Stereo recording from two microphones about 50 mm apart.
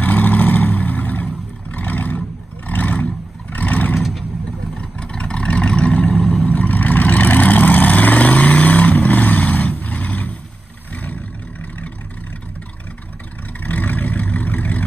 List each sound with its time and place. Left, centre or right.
0.0 s vehicle: left
3.9 s vehicle: centre
4.7 s vehicle: left
13.6 s vehicle: left